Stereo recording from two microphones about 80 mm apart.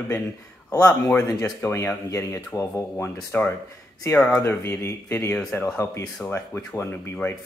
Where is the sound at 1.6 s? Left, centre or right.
Left.